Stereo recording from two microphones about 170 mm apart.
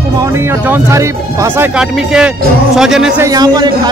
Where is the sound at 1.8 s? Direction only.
5° right (ahead or behind).